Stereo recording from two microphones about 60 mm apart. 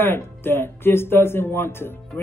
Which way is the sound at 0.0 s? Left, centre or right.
Left.